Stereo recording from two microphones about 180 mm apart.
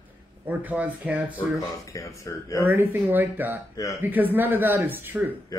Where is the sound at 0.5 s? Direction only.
10° right (ahead or behind).